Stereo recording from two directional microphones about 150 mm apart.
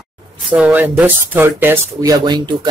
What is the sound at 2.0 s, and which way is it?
Speech, 25° right (ahead or behind).